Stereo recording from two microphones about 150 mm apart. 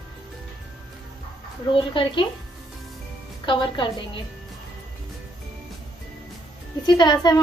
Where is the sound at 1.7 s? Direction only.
35° left (ahead or behind).